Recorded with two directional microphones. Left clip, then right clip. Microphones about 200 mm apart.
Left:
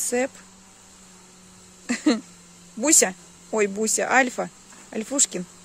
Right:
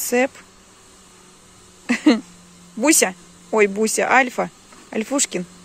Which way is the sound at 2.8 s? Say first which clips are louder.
Right 4 dB; 10° left (ahead or behind).